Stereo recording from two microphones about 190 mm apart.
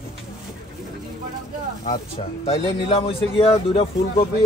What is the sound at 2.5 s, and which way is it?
Speech, 30° left (ahead or behind).